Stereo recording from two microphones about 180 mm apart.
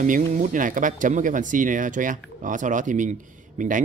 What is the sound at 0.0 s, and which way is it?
Speech, 45° right (ahead or behind).